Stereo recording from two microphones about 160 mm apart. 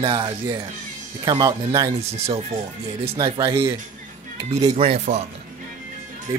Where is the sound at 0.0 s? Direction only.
30° right (ahead or behind).